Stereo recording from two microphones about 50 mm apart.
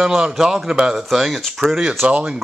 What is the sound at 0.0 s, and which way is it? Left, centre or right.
A man's voice, centre.